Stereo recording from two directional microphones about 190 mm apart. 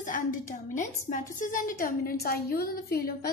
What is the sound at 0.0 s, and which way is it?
A woman's voice, 45° left (ahead or behind).